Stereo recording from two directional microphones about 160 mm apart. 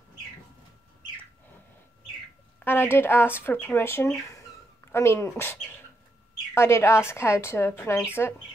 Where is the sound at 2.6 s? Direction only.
15° left (ahead or behind).